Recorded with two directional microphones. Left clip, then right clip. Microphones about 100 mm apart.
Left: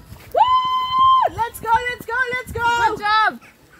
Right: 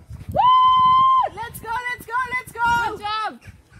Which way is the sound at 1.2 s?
15° right (ahead or behind).